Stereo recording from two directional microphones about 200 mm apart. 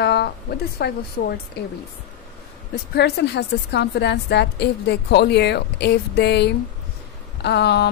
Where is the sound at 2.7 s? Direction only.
55° left (ahead or behind).